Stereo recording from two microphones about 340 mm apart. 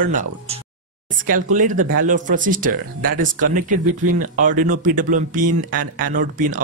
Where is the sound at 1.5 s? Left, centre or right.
Right.